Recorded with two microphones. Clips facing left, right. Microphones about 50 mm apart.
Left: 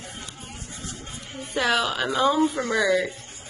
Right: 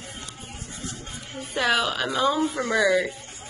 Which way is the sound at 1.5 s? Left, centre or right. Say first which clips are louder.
Even; centre.